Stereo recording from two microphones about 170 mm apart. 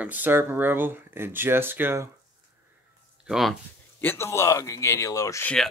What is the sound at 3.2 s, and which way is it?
Speech, centre (ahead or behind).